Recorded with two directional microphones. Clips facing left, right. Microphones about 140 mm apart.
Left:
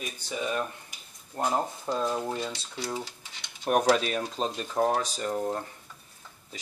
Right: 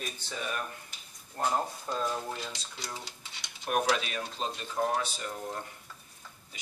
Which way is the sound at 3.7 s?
40° left (ahead or behind).